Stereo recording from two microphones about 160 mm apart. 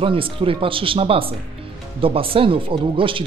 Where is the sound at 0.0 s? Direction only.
35° right (ahead or behind).